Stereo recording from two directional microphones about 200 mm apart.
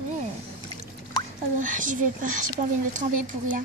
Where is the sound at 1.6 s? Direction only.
40° right (ahead or behind).